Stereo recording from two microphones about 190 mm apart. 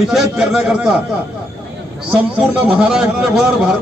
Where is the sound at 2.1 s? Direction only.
5° right (ahead or behind).